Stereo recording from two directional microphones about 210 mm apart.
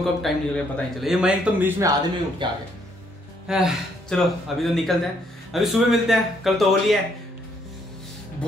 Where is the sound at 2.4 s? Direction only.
20° right (ahead or behind).